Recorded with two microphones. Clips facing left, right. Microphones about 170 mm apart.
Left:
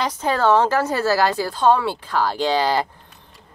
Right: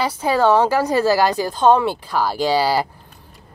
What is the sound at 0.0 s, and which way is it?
Speech, 10° right (ahead or behind).